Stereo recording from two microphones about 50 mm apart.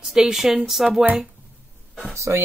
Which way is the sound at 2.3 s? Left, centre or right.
Right.